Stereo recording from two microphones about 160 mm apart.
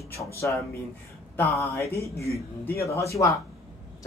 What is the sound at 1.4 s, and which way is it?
A man's voice, 20° left (ahead or behind).